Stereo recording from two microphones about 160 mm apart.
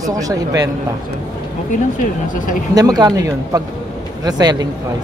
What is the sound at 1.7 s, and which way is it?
Speech, 55° left (ahead or behind).